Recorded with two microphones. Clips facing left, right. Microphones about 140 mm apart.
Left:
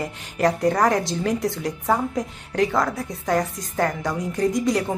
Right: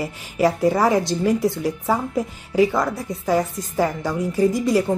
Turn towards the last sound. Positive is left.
turn(degrees=-5)  # may be behind; listen again after turning